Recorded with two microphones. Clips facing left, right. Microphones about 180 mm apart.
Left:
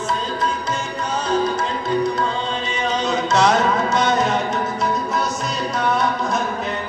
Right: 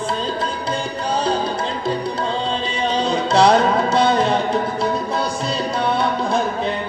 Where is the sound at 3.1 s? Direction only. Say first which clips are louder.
Right 3 dB; 30° right (ahead or behind).